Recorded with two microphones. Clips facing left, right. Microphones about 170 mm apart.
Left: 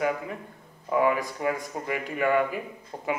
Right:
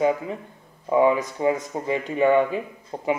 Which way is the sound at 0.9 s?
20° right (ahead or behind).